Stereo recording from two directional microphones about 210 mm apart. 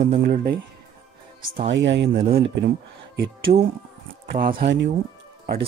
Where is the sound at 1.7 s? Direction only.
55° right (ahead or behind).